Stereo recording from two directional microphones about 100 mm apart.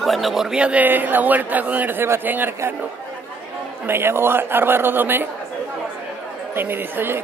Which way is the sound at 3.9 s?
25° right (ahead or behind).